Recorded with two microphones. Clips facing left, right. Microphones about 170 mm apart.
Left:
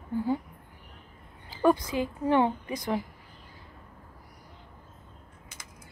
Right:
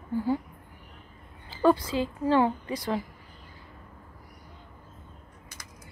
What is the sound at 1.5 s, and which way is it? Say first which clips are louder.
A woman's voice: right 1 dB; 15° left (ahead or behind).